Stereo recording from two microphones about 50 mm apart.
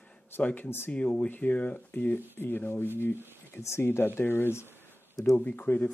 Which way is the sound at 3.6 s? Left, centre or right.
Left.